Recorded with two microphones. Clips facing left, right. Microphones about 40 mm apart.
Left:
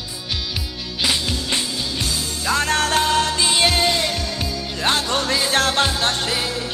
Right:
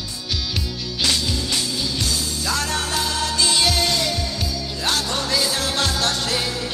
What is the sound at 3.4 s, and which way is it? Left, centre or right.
Music, left.